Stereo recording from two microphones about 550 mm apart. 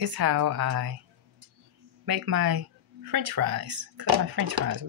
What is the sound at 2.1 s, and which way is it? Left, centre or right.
Speech, right.